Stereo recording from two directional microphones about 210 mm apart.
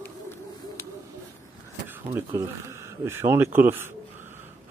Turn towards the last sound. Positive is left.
turn(degrees=-10)  # may be behind; listen again after turning